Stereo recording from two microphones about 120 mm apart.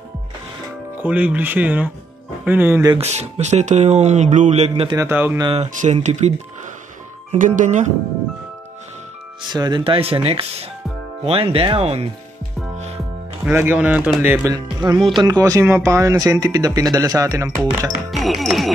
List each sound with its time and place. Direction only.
1.0 s speech: 10° right (ahead or behind)
3.0 s speech: 65° right (ahead or behind)
5.1 s speech: 15° right (ahead or behind)
5.5 s speech: 70° right (ahead or behind)
7.2 s speech: 90° right
9.5 s speech: 35° right (ahead or behind); by 12.1 s 55° right (ahead or behind)
12.7 s music: 65° right (ahead or behind)
13.5 s speech: 15° right (ahead or behind)
14.4 s speech: 35° right (ahead or behind)
18.1 s music: centre (ahead or behind)